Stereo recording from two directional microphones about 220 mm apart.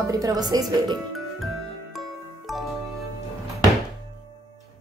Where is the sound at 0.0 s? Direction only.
15° right (ahead or behind).